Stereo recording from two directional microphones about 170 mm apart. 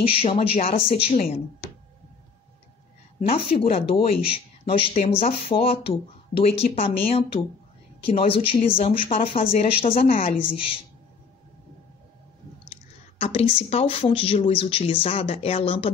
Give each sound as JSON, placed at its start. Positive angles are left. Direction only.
{"t": 0.0, "sound": "speech", "side_deg": 35}
{"t": 1.1, "sound": "speech", "side_deg": 50}
{"t": 3.2, "sound": "speech", "side_deg": 35}
{"t": 8.5, "sound": "speech", "side_deg": 55}
{"t": 8.8, "sound": "speech", "side_deg": 35}
{"t": 13.2, "sound": "speech", "side_deg": 35}